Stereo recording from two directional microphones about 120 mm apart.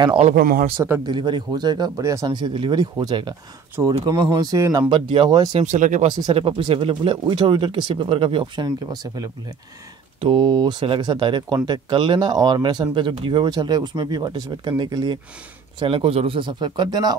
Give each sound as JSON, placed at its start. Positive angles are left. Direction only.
{"t": 0.2, "sound": "speech", "side_deg": -65}
{"t": 1.0, "sound": "speech", "side_deg": -40}
{"t": 4.8, "sound": "speech", "side_deg": -40}
{"t": 5.5, "sound": "speech", "side_deg": -75}
{"t": 6.2, "sound": "speech", "side_deg": -45}
{"t": 8.6, "sound": "speech", "side_deg": -30}
{"t": 15.8, "sound": "speech", "side_deg": -50}